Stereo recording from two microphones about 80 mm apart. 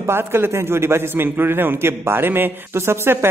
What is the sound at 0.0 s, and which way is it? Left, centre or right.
A man's voice, right.